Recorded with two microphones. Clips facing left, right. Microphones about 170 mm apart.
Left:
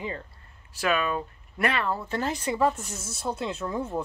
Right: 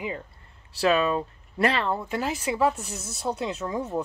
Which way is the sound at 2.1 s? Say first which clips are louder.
Right 1 dB; 5° right (ahead or behind).